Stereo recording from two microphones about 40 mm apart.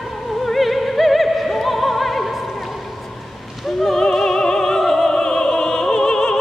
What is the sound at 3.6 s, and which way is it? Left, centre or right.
Opera, centre.